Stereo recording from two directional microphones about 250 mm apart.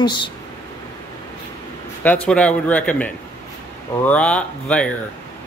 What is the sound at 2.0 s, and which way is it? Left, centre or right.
Speech, centre.